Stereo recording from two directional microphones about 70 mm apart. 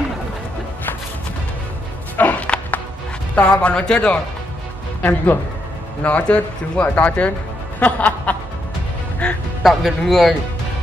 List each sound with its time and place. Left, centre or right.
2.1 s music: left
3.3 s speech: centre
5.0 s speech: left
6.0 s speech: centre
7.8 s music: left
9.6 s speech: centre